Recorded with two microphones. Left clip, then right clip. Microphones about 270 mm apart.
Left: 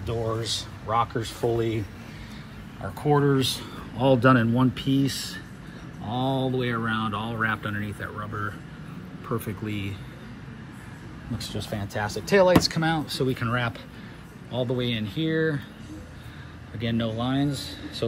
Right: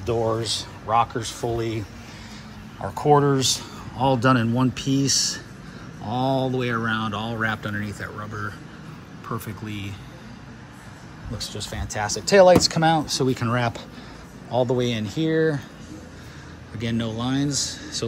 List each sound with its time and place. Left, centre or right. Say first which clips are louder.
0.0 s speech: right 6 dB; centre
2.8 s speech: right 5 dB; centre
6.0 s speech: right 4 dB; centre
11.3 s speech: right 1 dB; centre
16.8 s speech: right 1 dB; centre